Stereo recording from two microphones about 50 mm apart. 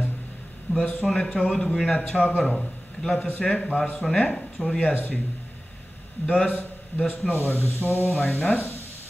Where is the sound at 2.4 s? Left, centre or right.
Centre.